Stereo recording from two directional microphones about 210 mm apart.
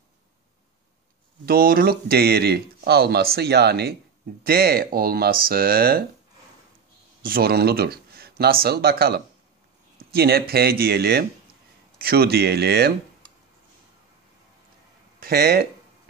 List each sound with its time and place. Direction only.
1.4 s speech: 45° right (ahead or behind)
7.2 s speech: 45° right (ahead or behind)
15.1 s speech: 45° right (ahead or behind)